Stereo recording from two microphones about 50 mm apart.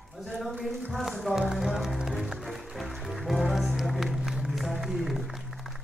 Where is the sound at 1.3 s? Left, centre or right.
Centre.